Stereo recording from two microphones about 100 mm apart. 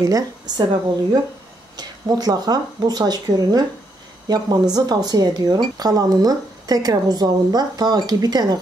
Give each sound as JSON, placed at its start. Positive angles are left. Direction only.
{"t": 0.0, "sound": "speech", "side_deg": -40}